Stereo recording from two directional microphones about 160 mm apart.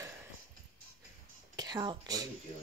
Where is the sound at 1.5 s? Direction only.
25° right (ahead or behind).